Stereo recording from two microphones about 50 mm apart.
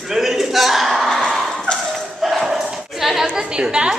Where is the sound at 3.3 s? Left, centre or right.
Centre.